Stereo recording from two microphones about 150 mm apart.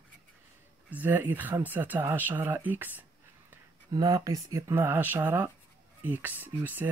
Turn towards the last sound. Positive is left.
turn(degrees=-10)  # may be behind; listen again after turning